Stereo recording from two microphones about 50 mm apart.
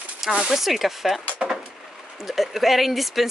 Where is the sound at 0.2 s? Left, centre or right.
Centre.